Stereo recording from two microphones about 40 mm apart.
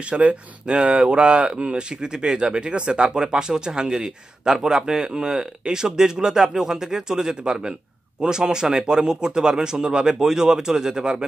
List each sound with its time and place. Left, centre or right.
0.1 s speech: right